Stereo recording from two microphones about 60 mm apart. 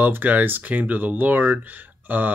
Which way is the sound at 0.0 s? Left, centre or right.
Right.